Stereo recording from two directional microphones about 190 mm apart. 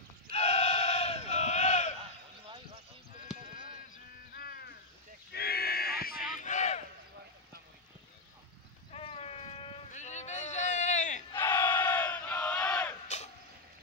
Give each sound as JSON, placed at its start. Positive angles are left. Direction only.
{"t": 0.3, "sound": "sheep", "side_deg": 35}
{"t": 3.5, "sound": "music", "side_deg": -30}
{"t": 4.4, "sound": "crow", "side_deg": 55}
{"t": 5.3, "sound": "a sound", "side_deg": 55}
{"t": 8.9, "sound": "a sound", "side_deg": 30}
{"t": 11.3, "sound": "battle cry", "side_deg": 10}